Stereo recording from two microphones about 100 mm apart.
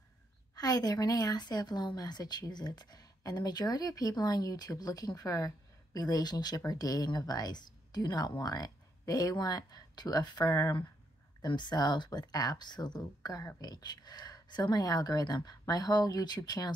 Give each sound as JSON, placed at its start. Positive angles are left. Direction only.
{"t": 0.6, "sound": "a woman's voice", "side_deg": 40}
{"t": 11.4, "sound": "a woman's voice", "side_deg": 50}